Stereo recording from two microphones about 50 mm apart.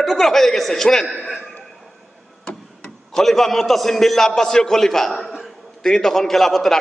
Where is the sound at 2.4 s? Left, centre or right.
Centre.